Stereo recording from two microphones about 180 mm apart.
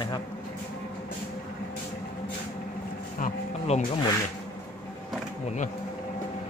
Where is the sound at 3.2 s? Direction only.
40° left (ahead or behind).